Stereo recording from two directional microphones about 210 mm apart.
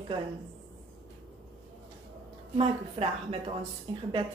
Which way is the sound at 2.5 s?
30° right (ahead or behind).